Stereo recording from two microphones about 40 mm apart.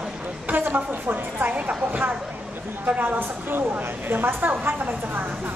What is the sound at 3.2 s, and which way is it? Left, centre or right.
A woman's voice, right.